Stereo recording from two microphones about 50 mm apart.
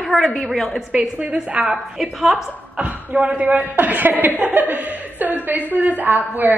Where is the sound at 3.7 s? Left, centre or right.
Right.